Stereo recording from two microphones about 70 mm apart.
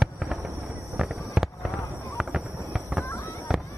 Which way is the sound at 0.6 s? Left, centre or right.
Centre.